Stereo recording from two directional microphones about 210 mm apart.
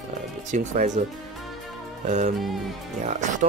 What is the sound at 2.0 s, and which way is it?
Speech, 35° right (ahead or behind).